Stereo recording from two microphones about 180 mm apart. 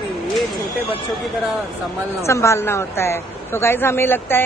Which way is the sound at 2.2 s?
15° left (ahead or behind).